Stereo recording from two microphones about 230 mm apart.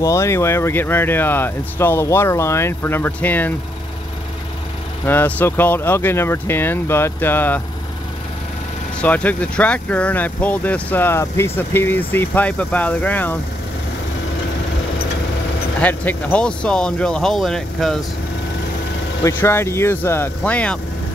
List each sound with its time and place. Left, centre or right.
0.0 s speech: centre
5.0 s speech: centre
9.0 s speech: centre
15.8 s speech: centre
19.2 s speech: centre